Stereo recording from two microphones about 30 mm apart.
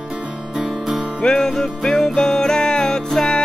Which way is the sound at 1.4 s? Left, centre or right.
Centre.